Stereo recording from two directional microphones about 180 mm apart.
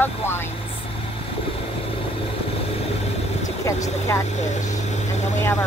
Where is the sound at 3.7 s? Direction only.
15° left (ahead or behind).